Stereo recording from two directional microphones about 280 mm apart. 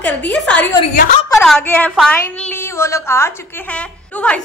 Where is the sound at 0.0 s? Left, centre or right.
Centre.